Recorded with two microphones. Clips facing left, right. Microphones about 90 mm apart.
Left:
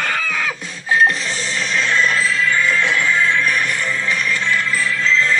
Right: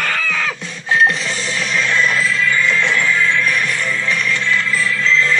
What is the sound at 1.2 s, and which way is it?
Music, 5° right (ahead or behind).